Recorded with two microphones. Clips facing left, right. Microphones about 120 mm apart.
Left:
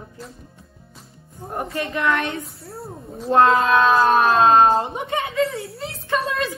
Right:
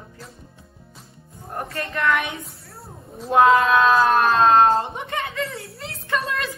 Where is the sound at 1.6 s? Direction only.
Centre (ahead or behind).